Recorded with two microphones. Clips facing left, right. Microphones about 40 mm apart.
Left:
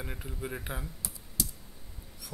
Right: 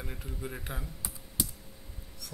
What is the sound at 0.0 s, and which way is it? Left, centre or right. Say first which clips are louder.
Speech: left 1 dB; centre.